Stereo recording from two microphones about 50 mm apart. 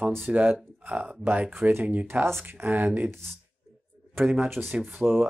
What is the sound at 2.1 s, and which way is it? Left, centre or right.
Speech, right.